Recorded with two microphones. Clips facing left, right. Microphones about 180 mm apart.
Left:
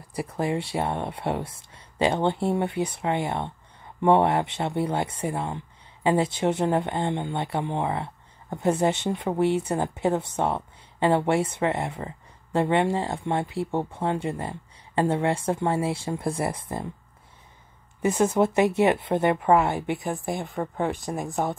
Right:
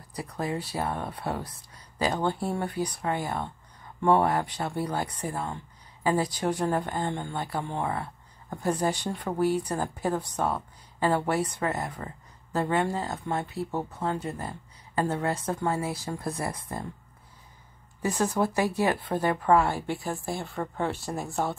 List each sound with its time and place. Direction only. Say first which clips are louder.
0.1 s speech: left 5 dB; 25° left (ahead or behind)
18.0 s speech: left 5 dB; 20° left (ahead or behind)